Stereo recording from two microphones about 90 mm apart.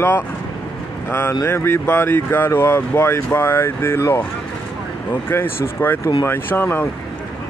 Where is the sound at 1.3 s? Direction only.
35° left (ahead or behind).